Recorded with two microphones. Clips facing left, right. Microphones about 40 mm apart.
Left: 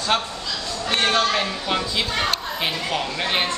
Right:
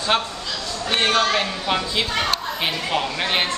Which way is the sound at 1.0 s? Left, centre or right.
Centre.